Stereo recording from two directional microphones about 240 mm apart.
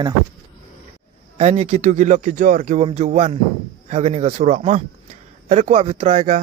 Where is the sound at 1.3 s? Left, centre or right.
Right.